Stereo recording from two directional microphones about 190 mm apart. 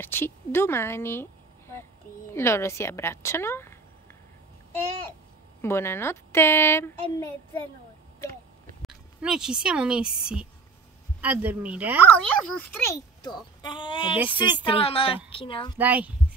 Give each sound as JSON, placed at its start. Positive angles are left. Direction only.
{"t": 0.0, "sound": "a child's voice", "side_deg": 10}
{"t": 5.6, "sound": "a child's voice", "side_deg": 15}
{"t": 8.8, "sound": "speech", "side_deg": 0}
{"t": 12.1, "sound": "a child's voice", "side_deg": 10}
{"t": 14.1, "sound": "speech", "side_deg": -10}
{"t": 14.4, "sound": "a child's voice", "side_deg": 25}
{"t": 15.8, "sound": "speech", "side_deg": -10}